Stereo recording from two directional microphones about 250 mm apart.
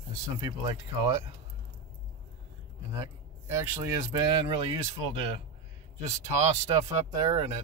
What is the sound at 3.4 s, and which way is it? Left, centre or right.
Speech, centre.